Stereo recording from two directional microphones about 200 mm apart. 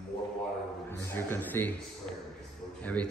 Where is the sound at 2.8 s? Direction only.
5° left (ahead or behind).